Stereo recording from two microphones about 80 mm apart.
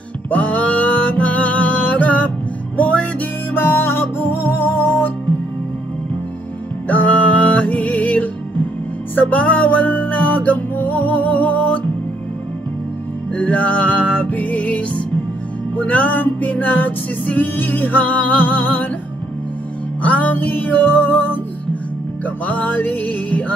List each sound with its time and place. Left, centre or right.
0.3 s music: centre
6.9 s music: left
13.3 s music: centre
20.0 s music: centre